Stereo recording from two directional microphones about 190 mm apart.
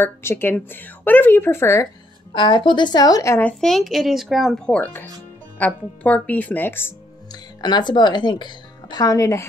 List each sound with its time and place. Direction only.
0.0 s speech: 10° left (ahead or behind)
2.3 s speech: 25° left (ahead or behind)
7.3 s speech: 20° left (ahead or behind)